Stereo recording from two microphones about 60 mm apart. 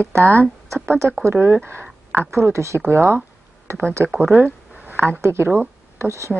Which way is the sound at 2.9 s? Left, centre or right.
Right.